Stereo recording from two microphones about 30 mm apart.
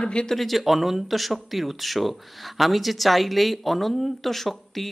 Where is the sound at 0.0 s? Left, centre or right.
Left.